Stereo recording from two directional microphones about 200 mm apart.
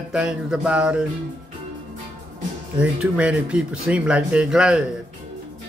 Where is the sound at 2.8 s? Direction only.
5° right (ahead or behind).